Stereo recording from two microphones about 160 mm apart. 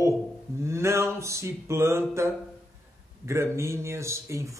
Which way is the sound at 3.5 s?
15° right (ahead or behind).